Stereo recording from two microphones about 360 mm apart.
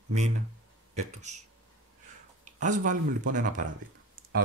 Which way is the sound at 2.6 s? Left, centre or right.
Right.